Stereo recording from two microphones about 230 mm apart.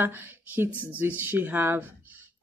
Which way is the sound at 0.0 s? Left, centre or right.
Centre.